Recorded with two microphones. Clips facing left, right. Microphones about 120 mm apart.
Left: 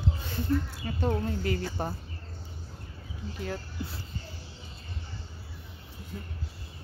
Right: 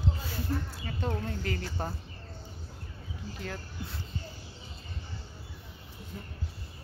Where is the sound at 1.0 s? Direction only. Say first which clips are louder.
Left 5 dB; 10° left (ahead or behind).